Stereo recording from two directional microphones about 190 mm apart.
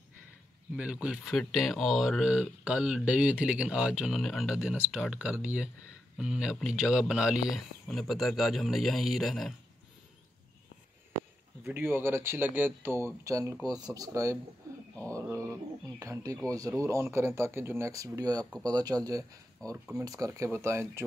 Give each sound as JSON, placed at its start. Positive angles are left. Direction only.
{"t": 0.7, "sound": "speech", "side_deg": -5}
{"t": 11.6, "sound": "speech", "side_deg": -10}
{"t": 15.1, "sound": "a sound", "side_deg": -15}
{"t": 16.4, "sound": "speech", "side_deg": -20}